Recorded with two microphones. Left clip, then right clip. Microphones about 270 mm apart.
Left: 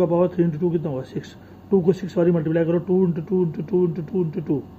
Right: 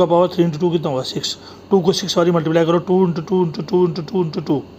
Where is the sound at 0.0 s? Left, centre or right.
Centre.